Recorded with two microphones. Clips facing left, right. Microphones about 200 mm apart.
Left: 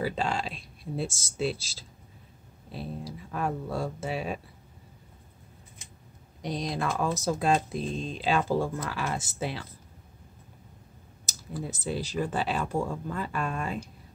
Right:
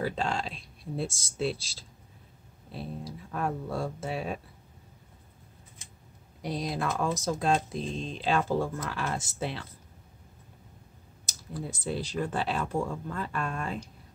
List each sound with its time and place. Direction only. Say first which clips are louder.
0.0 s speech: left 1 dB; 5° left (ahead or behind)
6.4 s speech: left 1 dB; 5° right (ahead or behind)
11.2 s speech: left 1 dB; centre (ahead or behind)